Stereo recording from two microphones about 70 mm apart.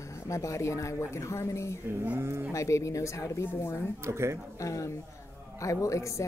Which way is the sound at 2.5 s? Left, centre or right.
Left.